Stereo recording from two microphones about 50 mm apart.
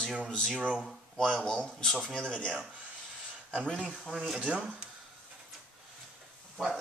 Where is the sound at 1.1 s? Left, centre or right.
Centre.